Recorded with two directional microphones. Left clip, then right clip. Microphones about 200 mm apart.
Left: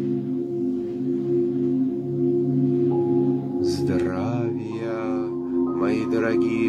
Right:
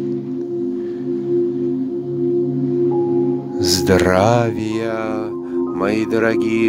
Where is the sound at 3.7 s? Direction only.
45° right (ahead or behind).